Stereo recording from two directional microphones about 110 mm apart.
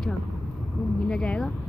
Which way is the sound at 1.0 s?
10° left (ahead or behind).